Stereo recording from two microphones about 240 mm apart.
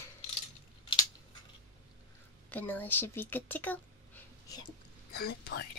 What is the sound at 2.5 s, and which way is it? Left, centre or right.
Speech, centre.